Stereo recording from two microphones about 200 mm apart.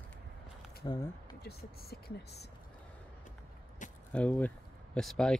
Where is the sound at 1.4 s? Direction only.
50° left (ahead or behind).